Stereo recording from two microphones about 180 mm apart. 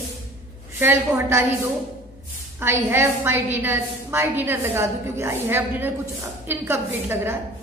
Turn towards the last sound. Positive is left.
turn(degrees=-15)  # may be behind; listen again after turning